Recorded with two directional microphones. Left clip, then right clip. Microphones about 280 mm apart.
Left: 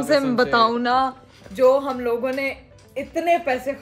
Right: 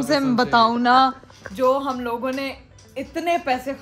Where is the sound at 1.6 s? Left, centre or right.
Centre.